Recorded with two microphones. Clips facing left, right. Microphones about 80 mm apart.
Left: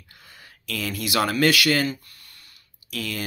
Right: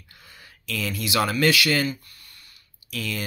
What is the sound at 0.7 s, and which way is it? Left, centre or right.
Speech, left.